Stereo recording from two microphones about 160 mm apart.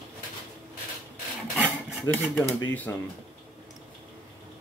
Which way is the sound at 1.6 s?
10° left (ahead or behind).